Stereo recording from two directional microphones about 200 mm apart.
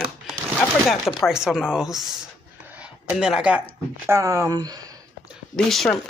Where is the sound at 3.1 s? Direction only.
5° right (ahead or behind).